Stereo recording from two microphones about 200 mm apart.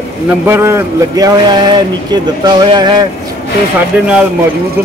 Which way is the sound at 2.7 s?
20° right (ahead or behind).